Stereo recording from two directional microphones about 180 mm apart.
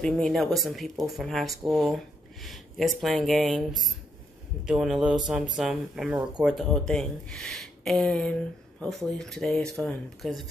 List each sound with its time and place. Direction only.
0.0 s speech: centre (ahead or behind)
4.6 s speech: centre (ahead or behind)